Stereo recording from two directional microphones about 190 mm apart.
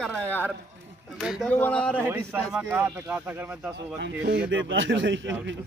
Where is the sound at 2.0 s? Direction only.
10° right (ahead or behind).